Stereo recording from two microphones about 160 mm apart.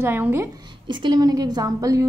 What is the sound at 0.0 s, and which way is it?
Speech, 15° right (ahead or behind).